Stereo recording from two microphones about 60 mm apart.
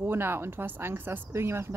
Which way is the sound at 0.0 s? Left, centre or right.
Right.